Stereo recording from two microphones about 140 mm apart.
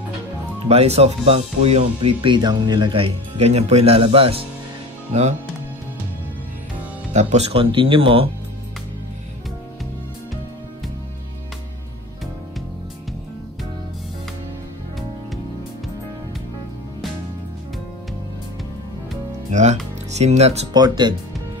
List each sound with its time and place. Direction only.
0.7 s speech: 45° right (ahead or behind)
7.1 s speech: 55° right (ahead or behind); by 8.3 s 40° right (ahead or behind)
19.5 s speech: 55° right (ahead or behind)
20.7 s speech: 30° right (ahead or behind)